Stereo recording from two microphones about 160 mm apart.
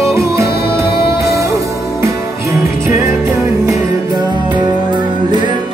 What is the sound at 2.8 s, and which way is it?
Music, 15° right (ahead or behind).